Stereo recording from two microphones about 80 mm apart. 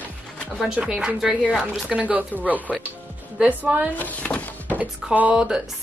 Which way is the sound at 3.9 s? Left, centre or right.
Centre.